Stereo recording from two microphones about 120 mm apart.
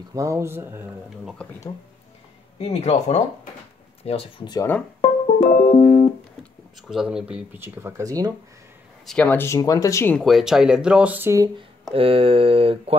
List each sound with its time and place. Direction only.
0.1 s speech: 25° right (ahead or behind)
2.6 s speech: 60° left (ahead or behind)
4.0 s speech: 55° left (ahead or behind)
5.0 s music: 55° left (ahead or behind)
6.9 s speech: 5° right (ahead or behind)
7.5 s speech: 20° right (ahead or behind)
9.0 s speech: 10° left (ahead or behind)
9.6 s speech: 30° left (ahead or behind)
10.1 s speech: centre (ahead or behind)
11.9 s speech: 50° right (ahead or behind)